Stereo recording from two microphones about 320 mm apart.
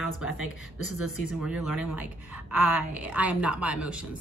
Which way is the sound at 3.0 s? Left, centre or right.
Centre.